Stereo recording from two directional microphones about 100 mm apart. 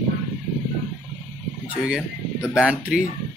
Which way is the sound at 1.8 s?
5° right (ahead or behind).